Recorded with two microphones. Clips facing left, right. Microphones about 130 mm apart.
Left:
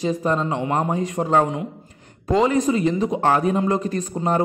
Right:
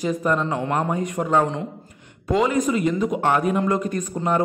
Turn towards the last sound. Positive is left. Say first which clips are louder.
# left 1 dB
turn(degrees=30)  # may be behind; listen again after turning